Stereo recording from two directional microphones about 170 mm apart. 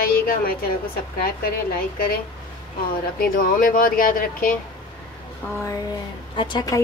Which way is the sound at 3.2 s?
55° left (ahead or behind).